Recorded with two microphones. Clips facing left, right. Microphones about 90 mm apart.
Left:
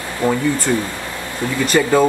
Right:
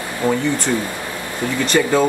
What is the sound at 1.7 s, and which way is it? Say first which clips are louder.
Speech: left 1 dB; 5° left (ahead or behind).